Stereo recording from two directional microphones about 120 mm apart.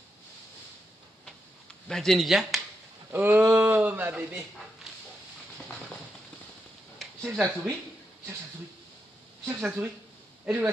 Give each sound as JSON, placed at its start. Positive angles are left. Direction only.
{"t": 1.9, "sound": "speech", "side_deg": 5}
{"t": 3.1, "sound": "speech", "side_deg": -15}
{"t": 7.0, "sound": "a sound", "side_deg": 0}
{"t": 9.5, "sound": "speech", "side_deg": -10}